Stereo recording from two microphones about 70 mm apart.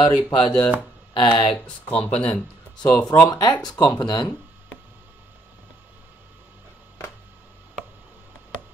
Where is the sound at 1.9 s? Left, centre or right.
Centre.